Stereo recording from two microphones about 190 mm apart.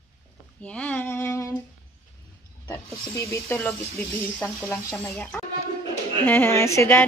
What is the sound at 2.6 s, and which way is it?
Snake, 5° left (ahead or behind).